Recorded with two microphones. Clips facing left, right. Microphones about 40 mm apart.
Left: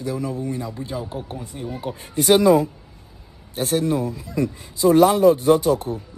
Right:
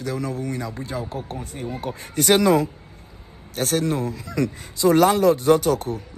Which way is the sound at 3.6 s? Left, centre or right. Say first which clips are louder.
Left 1 dB; right.